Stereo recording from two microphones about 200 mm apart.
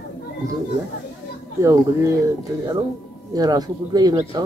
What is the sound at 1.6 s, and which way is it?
Speech, 15° right (ahead or behind).